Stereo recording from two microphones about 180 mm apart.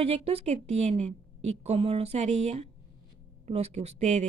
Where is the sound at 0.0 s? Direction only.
30° right (ahead or behind).